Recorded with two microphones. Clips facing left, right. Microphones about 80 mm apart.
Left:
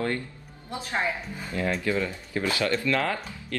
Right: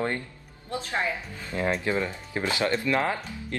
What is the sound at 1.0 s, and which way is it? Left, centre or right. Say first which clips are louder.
Speech: left 1 dB; centre.